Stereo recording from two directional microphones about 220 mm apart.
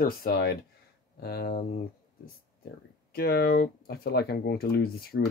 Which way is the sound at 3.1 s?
45° left (ahead or behind).